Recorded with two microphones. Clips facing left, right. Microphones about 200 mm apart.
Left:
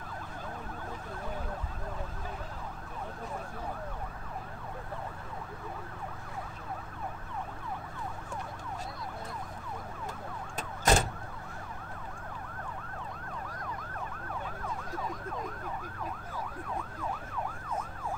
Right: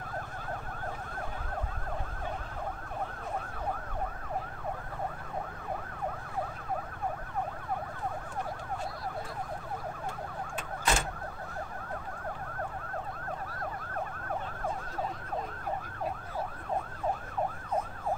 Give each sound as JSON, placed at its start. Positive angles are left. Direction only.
{"t": 10.5, "sound": "vehicle", "side_deg": 40}
{"t": 13.9, "sound": "emergency vehicle", "side_deg": -45}